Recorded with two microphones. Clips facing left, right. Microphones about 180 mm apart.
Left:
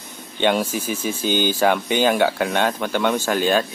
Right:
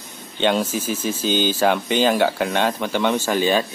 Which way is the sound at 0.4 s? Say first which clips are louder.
Even; 5° left (ahead or behind).